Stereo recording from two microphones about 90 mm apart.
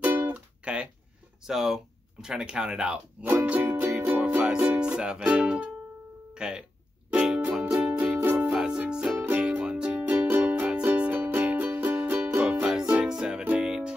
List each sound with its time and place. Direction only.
0.0 s music: 25° right (ahead or behind)
0.7 s speech: 10° right (ahead or behind)
3.3 s music: 15° right (ahead or behind)
6.3 s speech: 10° right (ahead or behind)
7.1 s music: 10° right (ahead or behind)
9.2 s music: 20° right (ahead or behind)